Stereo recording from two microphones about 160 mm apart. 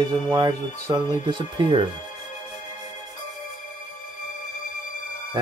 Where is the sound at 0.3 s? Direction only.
20° right (ahead or behind).